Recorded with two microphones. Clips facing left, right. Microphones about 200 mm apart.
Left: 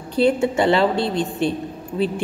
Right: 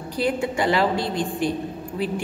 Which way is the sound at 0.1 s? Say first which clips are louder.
Left 6 dB; 25° left (ahead or behind).